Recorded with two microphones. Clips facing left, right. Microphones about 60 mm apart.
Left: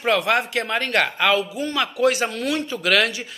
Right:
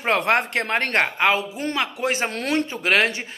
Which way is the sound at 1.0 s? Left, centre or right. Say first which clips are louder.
Left 1 dB; right.